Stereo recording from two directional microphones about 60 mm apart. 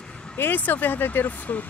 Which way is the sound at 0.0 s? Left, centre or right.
Centre.